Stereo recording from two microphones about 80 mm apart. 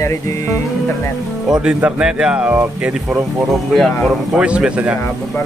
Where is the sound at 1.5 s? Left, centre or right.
Centre.